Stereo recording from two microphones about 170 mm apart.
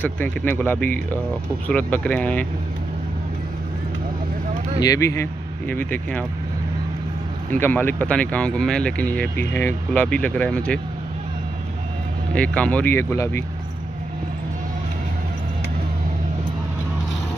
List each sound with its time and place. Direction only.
0.0 s speech: 10° left (ahead or behind)
4.7 s speech: 20° left (ahead or behind)
7.5 s speech: 10° left (ahead or behind)
12.4 s speech: 10° left (ahead or behind)